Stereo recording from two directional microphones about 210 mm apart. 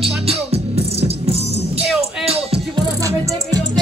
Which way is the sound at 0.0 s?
30° right (ahead or behind).